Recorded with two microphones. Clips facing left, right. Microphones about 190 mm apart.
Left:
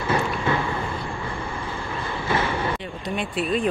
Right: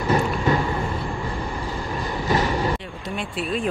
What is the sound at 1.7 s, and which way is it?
Vehicle, 40° right (ahead or behind).